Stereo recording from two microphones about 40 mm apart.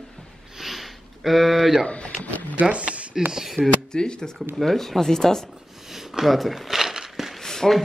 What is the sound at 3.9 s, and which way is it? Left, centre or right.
Speech, left.